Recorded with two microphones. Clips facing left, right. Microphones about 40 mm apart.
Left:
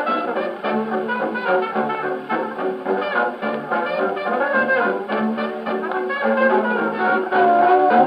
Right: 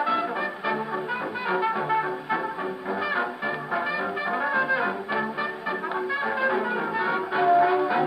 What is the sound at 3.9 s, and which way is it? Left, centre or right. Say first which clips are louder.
Brass instrument: left 7 dB; centre.